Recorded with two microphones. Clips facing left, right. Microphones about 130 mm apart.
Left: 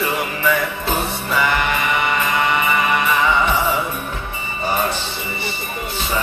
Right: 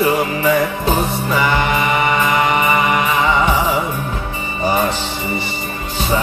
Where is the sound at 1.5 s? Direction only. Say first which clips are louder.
Right 3 dB; 40° right (ahead or behind).